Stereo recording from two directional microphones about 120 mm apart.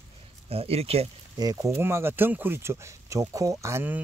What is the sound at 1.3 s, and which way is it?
Speech, 30° right (ahead or behind).